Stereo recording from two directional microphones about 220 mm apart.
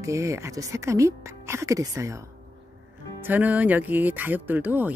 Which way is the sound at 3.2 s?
10° right (ahead or behind).